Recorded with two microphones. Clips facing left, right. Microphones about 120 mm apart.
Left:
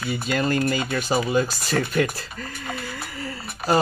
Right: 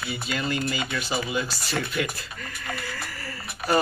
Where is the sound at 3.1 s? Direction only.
25° left (ahead or behind).